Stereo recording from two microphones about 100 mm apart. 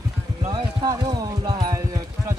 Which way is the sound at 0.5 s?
40° right (ahead or behind).